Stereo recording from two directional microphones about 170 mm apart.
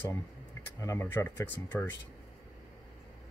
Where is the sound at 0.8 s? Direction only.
15° left (ahead or behind).